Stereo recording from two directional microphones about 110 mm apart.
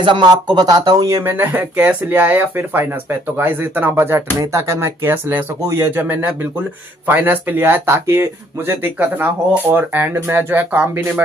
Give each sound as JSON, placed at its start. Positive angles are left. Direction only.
{"t": 0.0, "sound": "speech", "side_deg": -45}